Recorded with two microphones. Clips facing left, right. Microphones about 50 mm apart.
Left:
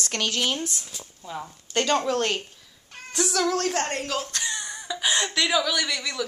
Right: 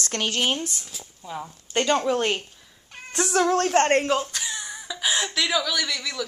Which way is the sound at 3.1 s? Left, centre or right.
Right.